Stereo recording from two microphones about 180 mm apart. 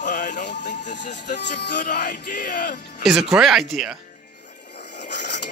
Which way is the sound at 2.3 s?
55° left (ahead or behind).